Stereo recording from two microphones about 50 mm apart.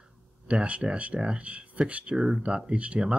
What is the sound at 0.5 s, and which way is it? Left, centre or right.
Speech, right.